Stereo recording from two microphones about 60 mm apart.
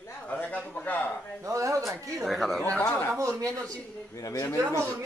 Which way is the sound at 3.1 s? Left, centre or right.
Right.